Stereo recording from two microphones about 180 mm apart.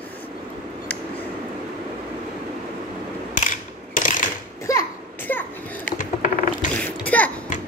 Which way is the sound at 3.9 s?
45° left (ahead or behind).